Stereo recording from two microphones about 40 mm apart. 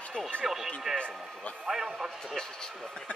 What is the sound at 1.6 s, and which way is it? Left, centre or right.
Speech, centre.